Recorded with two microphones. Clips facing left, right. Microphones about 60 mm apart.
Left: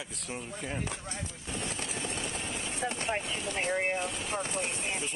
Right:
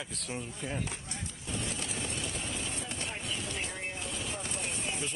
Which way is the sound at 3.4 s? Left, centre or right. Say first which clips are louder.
Left 7 dB; left.